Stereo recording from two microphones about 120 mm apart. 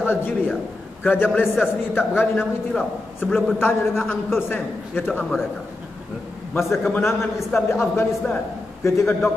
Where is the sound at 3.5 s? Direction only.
20° left (ahead or behind).